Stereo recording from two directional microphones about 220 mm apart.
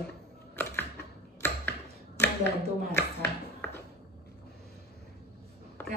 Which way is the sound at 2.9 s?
10° left (ahead or behind).